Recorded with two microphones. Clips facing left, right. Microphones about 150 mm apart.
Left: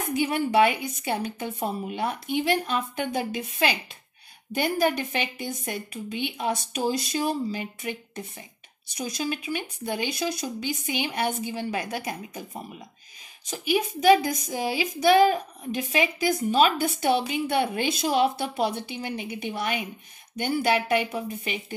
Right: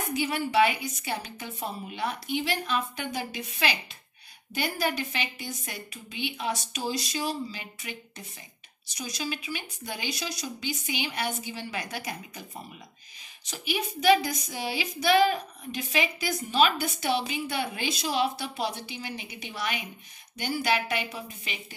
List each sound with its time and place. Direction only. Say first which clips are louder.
0.1 s a woman's voice: left 4 dB; 50° left (ahead or behind)
13.5 s a woman's voice: left 7 dB; 50° left (ahead or behind)